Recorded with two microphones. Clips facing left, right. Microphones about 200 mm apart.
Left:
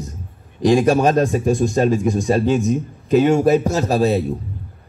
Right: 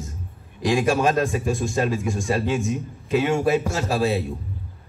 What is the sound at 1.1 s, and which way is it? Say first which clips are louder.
A man's voice: left 6 dB; 40° left (ahead or behind).